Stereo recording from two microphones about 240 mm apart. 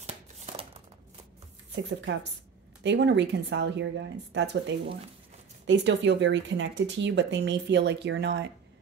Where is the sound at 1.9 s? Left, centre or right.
Right.